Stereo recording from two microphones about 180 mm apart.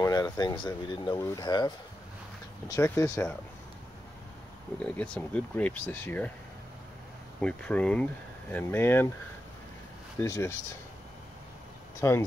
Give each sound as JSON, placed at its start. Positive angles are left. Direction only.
{"t": 0.0, "sound": "speech", "side_deg": 20}
{"t": 2.7, "sound": "speech", "side_deg": 15}
{"t": 4.8, "sound": "speech", "side_deg": 5}
{"t": 7.3, "sound": "speech", "side_deg": 5}
{"t": 10.2, "sound": "speech", "side_deg": 15}
{"t": 12.0, "sound": "speech", "side_deg": 15}